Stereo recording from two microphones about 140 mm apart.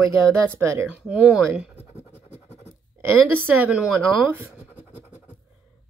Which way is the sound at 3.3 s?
10° right (ahead or behind).